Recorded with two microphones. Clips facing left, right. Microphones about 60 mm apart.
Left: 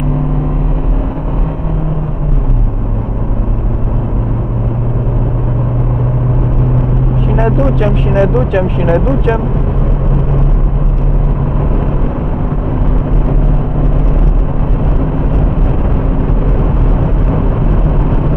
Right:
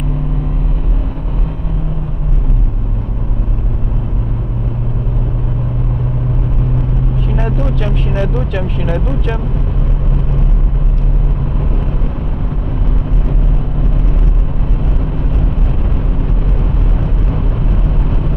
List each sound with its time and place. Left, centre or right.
7.2 s vehicle: left
17.0 s vehicle: centre